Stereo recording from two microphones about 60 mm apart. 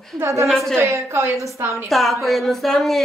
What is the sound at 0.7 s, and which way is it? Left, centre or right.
A woman's voice, right.